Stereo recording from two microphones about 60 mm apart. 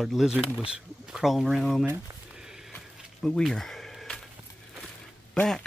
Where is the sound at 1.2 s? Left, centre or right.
Centre.